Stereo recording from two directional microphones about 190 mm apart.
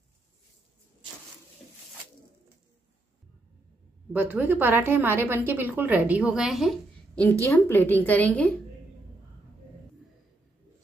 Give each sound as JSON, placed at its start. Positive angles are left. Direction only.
{"t": 4.1, "sound": "a woman's voice", "side_deg": -10}
{"t": 7.2, "sound": "a woman's voice", "side_deg": 10}